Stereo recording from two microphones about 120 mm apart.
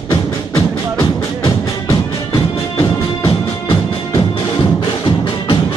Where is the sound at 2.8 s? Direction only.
35° left (ahead or behind).